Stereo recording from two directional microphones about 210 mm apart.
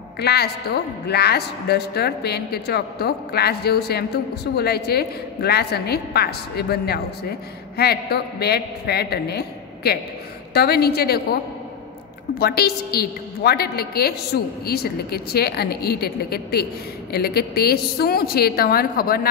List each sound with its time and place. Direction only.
0.2 s a woman's voice: 50° left (ahead or behind)
12.4 s a woman's voice: 45° left (ahead or behind)